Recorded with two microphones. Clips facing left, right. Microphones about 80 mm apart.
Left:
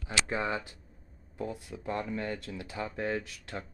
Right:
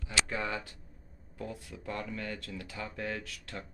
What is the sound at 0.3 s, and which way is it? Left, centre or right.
Speech, left.